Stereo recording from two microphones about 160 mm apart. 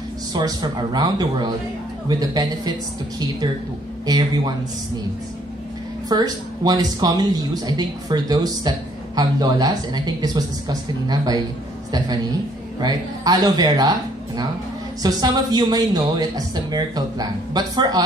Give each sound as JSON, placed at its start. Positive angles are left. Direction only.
{"t": 0.3, "sound": "speech", "side_deg": -25}
{"t": 4.0, "sound": "speech", "side_deg": -25}
{"t": 6.0, "sound": "speech", "side_deg": -25}
{"t": 12.8, "sound": "speech", "side_deg": -25}